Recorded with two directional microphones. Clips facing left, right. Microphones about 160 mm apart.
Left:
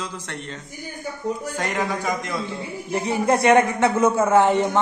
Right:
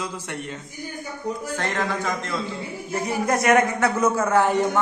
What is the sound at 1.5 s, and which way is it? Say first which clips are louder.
Speech: left 1 dB; 10° left (ahead or behind).